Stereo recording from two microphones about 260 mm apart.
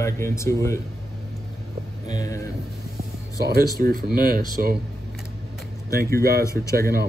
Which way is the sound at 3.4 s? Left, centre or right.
Right.